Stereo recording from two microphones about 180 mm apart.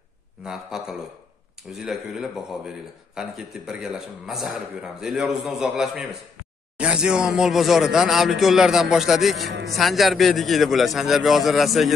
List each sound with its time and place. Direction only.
0.4 s a man's voice: 5° right (ahead or behind)
9.5 s a man's voice: 80° right
9.8 s a man's voice: centre (ahead or behind)